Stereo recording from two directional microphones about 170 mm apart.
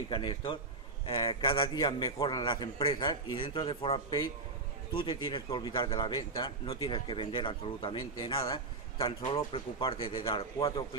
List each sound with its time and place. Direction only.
0.1 s a man's voice: 30° left (ahead or behind)